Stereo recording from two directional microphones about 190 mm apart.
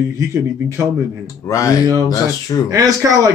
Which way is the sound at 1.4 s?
15° left (ahead or behind).